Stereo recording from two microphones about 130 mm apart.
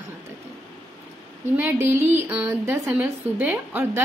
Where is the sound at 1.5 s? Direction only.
15° right (ahead or behind).